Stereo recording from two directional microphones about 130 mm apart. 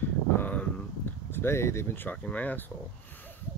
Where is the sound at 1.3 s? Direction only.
20° left (ahead or behind).